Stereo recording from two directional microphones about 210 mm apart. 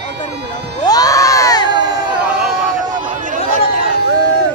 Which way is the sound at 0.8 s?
15° left (ahead or behind).